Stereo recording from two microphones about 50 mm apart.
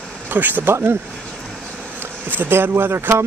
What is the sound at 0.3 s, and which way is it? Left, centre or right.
Speech, right.